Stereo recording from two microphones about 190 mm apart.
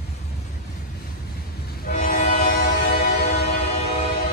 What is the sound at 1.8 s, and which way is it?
Train, 45° left (ahead or behind).